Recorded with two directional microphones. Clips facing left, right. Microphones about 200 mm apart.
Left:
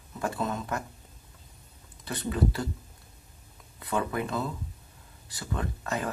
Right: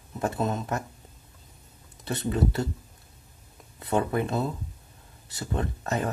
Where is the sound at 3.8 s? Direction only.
30° right (ahead or behind).